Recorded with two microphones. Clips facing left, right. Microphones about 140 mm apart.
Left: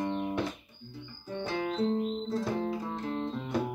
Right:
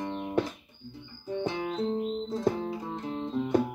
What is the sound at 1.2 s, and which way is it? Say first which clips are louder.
Music: right 2 dB; 20° right (ahead or behind).